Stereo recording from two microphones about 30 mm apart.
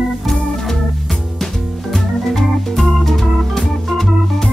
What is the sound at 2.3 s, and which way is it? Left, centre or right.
Organ, centre.